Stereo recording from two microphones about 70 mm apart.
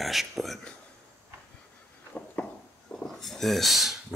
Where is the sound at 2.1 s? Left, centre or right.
Centre.